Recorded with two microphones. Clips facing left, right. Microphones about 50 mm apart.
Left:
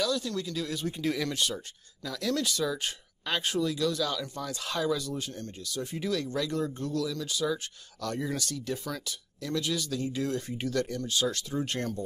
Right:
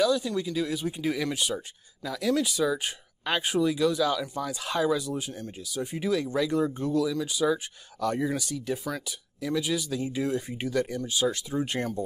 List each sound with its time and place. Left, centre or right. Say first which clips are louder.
0.0 s speech: right 5 dB; centre